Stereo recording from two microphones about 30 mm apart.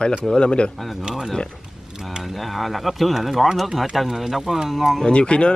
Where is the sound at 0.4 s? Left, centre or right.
Left.